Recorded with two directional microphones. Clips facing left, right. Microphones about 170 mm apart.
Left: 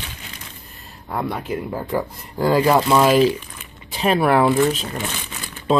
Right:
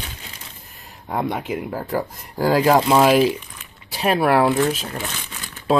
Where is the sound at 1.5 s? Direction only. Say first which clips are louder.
Left 1 dB; 5° right (ahead or behind).